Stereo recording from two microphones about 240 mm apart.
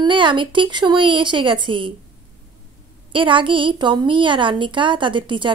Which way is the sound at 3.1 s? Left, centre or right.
Right.